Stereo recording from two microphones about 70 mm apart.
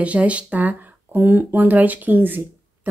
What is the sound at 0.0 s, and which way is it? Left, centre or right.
Speech, centre.